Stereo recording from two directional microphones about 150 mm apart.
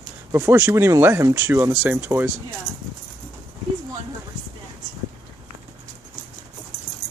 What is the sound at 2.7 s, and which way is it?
Keys jangling, 5° left (ahead or behind).